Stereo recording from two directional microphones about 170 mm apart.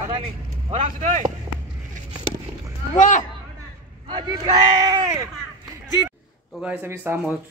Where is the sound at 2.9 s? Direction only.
50° left (ahead or behind).